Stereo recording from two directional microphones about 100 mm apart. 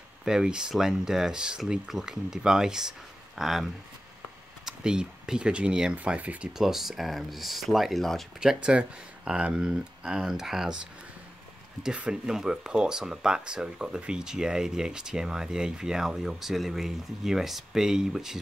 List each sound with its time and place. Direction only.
0.2 s speech: 5° right (ahead or behind)
11.8 s speech: 10° right (ahead or behind)